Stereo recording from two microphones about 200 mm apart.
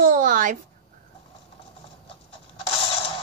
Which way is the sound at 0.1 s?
40° right (ahead or behind).